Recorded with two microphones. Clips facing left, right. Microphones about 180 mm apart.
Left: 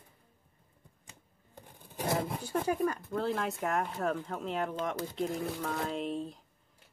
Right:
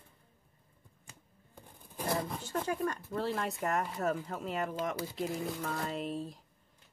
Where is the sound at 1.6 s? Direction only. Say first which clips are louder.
Left 3 dB; 20° left (ahead or behind).